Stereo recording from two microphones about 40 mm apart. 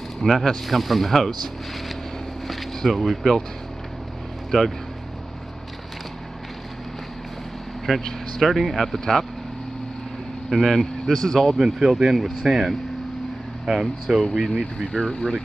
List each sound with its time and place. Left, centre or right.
0.2 s speech: centre
2.4 s speech: centre
4.5 s speech: centre
7.9 s speech: centre
10.5 s speech: centre
11.5 s speech: centre
14.6 s speech: centre